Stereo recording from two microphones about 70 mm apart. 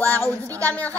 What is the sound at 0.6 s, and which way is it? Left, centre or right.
Speech, left.